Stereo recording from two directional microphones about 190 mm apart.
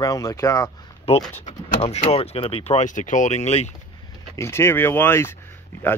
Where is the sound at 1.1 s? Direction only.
30° left (ahead or behind).